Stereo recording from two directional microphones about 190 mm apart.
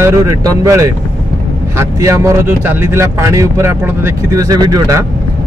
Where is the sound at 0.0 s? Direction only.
15° right (ahead or behind).